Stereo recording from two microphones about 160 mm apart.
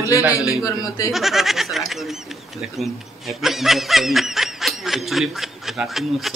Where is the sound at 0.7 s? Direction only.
20° left (ahead or behind).